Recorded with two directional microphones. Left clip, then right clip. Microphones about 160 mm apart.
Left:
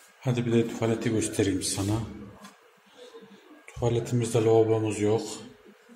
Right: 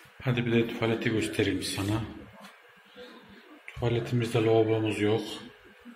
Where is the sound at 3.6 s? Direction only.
15° left (ahead or behind).